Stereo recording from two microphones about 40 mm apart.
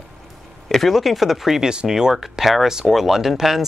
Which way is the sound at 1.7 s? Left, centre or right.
Centre.